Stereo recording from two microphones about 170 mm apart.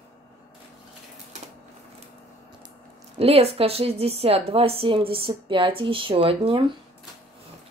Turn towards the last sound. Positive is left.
turn(degrees=-35)  # may be behind; listen again after turning